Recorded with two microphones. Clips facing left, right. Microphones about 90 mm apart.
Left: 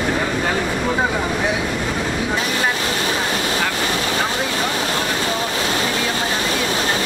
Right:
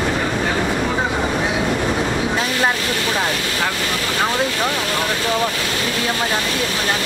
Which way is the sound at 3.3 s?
25° left (ahead or behind).